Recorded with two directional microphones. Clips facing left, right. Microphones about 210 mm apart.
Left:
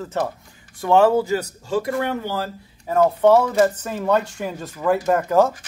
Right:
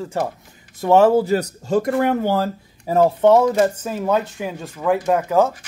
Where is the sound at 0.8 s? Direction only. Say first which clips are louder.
Right 2 dB; 20° right (ahead or behind).